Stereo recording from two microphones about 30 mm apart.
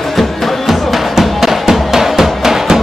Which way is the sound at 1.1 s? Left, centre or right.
Centre.